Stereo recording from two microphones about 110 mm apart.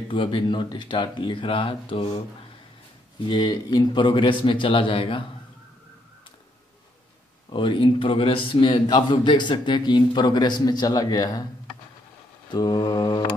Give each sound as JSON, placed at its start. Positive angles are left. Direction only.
{"t": 0.1, "sound": "a man's voice", "side_deg": 50}
{"t": 3.3, "sound": "a man's voice", "side_deg": 45}
{"t": 7.4, "sound": "a man's voice", "side_deg": 50}
{"t": 12.4, "sound": "mantra", "side_deg": 35}